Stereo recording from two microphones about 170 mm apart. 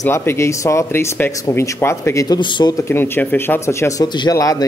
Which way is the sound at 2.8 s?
15° left (ahead or behind).